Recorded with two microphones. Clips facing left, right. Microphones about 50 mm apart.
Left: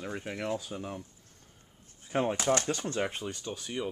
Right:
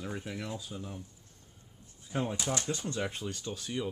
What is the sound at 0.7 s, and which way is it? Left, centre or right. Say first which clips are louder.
Speech: left 4 dB; left.